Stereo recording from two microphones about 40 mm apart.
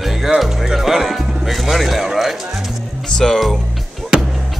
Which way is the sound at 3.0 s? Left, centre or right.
Centre.